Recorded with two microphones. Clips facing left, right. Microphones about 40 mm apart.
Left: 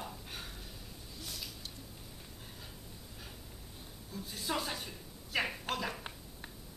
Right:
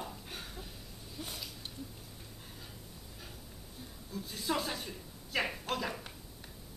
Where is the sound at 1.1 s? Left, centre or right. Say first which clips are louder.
Right 3 dB; right.